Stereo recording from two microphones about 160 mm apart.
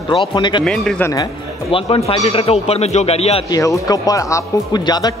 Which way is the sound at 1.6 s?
35° left (ahead or behind).